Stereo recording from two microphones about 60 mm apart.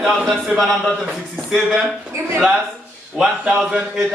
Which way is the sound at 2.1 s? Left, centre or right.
Right.